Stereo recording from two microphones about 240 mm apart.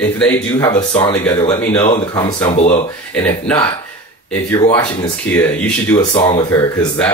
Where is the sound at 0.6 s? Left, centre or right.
Centre.